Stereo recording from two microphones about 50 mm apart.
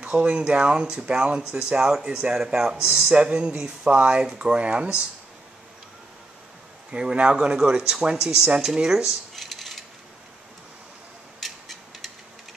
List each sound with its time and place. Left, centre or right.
0.1 s speech: centre
6.9 s speech: centre
8.4 s a sound: centre
11.4 s mechanisms: centre